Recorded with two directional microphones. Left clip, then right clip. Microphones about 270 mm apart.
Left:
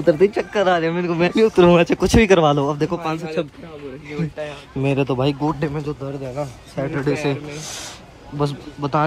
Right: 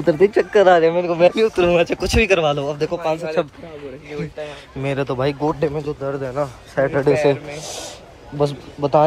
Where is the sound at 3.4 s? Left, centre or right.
Centre.